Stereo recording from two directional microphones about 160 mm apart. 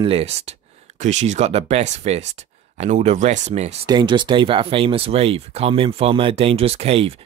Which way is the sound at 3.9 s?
30° right (ahead or behind).